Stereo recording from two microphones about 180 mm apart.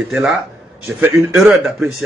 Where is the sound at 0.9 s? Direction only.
10° right (ahead or behind).